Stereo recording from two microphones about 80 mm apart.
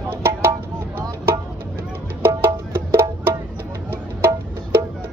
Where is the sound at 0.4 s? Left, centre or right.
Right.